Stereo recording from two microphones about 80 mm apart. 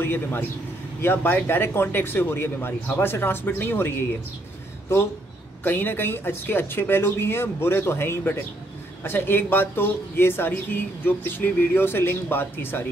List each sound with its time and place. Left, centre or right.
0.0 s a man's voice: left
5.6 s speech: left